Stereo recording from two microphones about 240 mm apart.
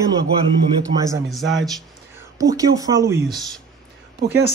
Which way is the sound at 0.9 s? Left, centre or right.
Centre.